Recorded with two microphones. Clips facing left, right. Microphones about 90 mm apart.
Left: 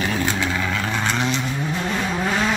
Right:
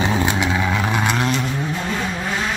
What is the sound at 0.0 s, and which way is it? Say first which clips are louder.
Vehicle: right 3 dB; 20° right (ahead or behind).